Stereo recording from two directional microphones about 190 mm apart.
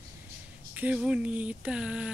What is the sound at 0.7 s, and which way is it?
Speech, 5° right (ahead or behind).